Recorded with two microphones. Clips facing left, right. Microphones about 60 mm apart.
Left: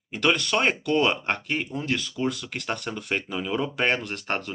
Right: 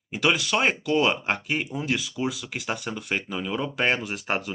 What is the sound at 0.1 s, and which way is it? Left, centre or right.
Speech, centre.